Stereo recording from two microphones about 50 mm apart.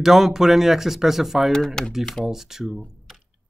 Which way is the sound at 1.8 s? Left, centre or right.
Centre.